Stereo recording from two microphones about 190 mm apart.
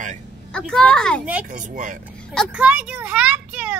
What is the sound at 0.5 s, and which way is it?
Speech, 5° left (ahead or behind).